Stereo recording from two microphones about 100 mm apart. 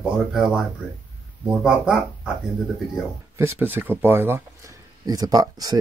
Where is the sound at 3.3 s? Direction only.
25° right (ahead or behind).